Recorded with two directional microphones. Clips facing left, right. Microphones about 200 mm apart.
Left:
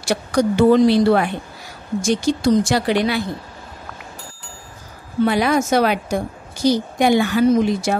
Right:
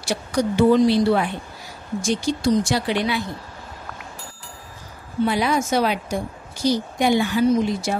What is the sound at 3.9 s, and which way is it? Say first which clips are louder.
Bicycle: left 1 dB; centre (ahead or behind).